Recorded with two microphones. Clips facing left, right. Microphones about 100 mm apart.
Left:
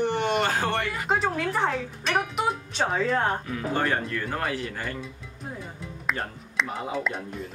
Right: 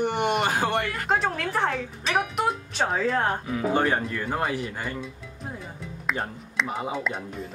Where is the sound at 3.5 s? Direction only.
15° right (ahead or behind).